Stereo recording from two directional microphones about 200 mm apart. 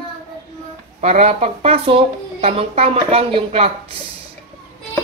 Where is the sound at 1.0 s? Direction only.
30° right (ahead or behind).